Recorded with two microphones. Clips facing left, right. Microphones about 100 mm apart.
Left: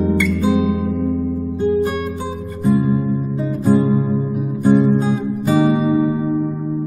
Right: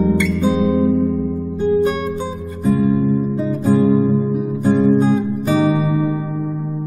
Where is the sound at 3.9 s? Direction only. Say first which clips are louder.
Right 3 dB; 5° right (ahead or behind).